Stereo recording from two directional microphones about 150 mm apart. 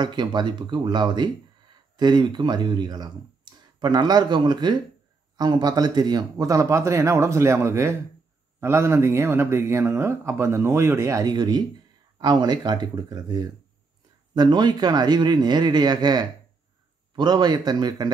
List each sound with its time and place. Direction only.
0.0 s speech: 30° right (ahead or behind)